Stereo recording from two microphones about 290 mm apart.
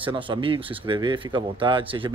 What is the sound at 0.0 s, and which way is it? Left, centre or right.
A man's voice, centre.